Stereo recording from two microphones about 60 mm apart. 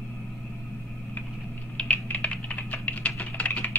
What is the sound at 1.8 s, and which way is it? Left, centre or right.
Typing, left.